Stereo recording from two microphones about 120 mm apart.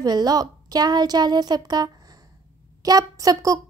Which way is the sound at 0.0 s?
35° right (ahead or behind).